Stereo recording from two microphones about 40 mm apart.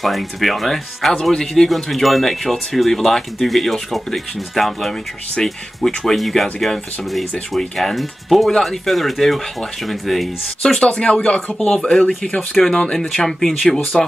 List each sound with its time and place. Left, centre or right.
0.0 s speech: centre
10.6 s speech: left
11.8 s speech: left
12.4 s speech: centre
12.7 s speech: left
13.1 s speech: centre